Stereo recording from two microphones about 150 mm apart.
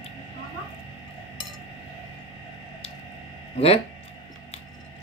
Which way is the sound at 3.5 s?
40° left (ahead or behind).